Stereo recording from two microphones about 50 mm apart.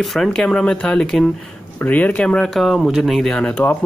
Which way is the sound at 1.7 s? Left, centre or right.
Left.